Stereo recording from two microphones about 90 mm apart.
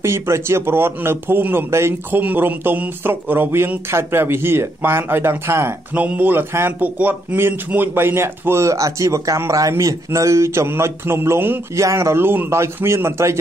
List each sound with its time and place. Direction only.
0.0 s a man's voice: 30° right (ahead or behind)